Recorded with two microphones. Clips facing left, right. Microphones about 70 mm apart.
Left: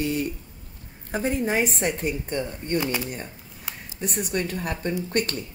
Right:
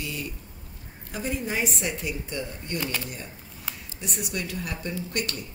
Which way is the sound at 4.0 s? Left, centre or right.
Left.